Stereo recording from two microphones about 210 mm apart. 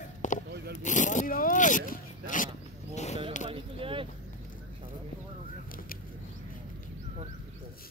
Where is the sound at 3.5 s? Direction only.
25° right (ahead or behind).